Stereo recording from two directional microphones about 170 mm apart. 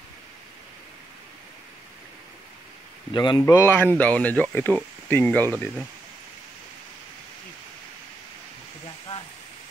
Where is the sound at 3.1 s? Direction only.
30° left (ahead or behind).